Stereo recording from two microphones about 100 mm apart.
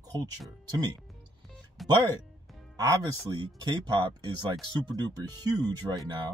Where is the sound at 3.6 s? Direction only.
45° right (ahead or behind).